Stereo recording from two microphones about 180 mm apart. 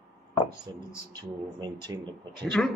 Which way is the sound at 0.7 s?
20° right (ahead or behind).